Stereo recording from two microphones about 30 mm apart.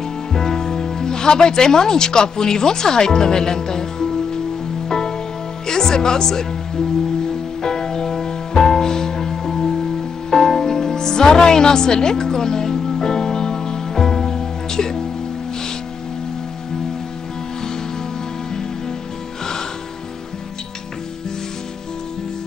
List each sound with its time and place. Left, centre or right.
0.4 s speech: centre
4.8 s music: left
5.7 s speech: left
7.6 s music: centre